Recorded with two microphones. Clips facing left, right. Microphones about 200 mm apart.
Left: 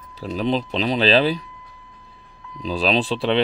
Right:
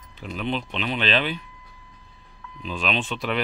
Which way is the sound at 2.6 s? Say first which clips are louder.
Left 7 dB; 35° left (ahead or behind).